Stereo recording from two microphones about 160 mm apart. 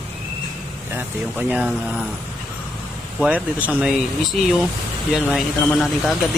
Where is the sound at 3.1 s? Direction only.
5° right (ahead or behind).